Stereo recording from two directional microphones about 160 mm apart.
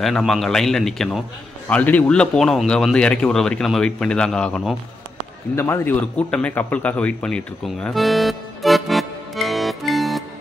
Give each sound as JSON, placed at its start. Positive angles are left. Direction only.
{"t": 0.0, "sound": "speech", "side_deg": 0}